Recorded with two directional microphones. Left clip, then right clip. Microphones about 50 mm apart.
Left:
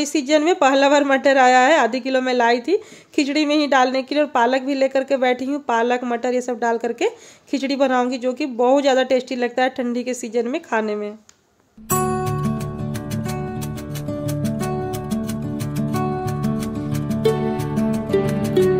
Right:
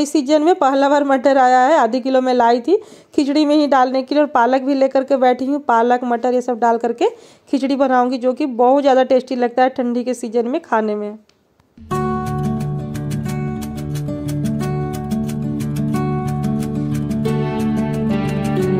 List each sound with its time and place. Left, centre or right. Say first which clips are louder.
0.0 s speech: right 3 dB; right
4.2 s speech: right 3 dB; right
6.1 s a woman's voice: right 4 dB; right
11.9 s music: even; centre